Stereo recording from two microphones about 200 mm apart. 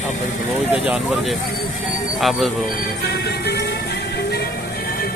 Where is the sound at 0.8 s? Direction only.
Centre (ahead or behind).